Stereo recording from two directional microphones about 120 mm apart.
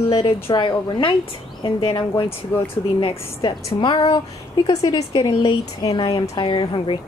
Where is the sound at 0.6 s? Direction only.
40° left (ahead or behind).